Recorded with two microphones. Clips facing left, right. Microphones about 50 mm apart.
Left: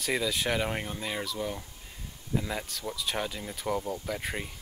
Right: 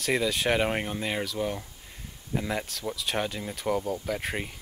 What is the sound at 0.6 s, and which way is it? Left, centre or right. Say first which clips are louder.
Speech: right 4 dB; right.